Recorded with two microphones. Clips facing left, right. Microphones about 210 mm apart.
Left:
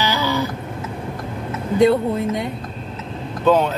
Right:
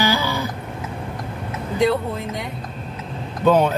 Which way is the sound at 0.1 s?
15° right (ahead or behind).